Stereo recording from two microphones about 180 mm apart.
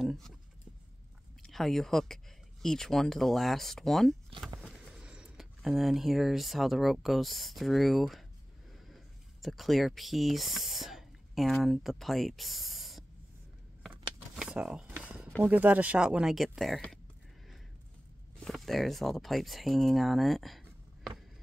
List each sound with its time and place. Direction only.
0.0 s speech: centre (ahead or behind)
1.4 s speech: centre (ahead or behind)
14.3 s a sound: 5° right (ahead or behind)
15.4 s speech: 10° right (ahead or behind)
18.4 s speech: centre (ahead or behind)